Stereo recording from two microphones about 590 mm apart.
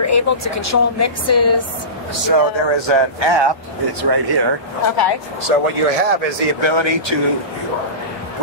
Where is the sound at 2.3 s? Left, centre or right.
Right.